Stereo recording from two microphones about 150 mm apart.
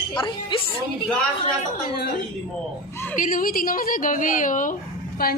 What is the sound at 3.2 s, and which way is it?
A woman's voice, 70° left (ahead or behind).